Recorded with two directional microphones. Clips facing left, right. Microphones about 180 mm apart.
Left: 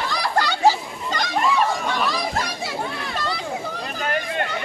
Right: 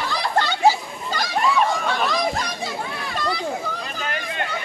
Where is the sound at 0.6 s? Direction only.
5° right (ahead or behind).